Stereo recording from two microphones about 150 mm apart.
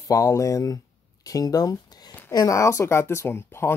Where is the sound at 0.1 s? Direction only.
20° left (ahead or behind).